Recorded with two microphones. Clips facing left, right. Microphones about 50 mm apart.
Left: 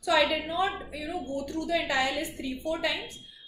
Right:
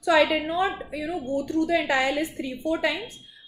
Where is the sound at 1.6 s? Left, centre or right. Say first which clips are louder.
Right 3 dB; right.